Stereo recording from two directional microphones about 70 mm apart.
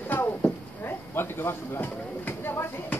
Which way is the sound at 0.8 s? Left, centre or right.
Left.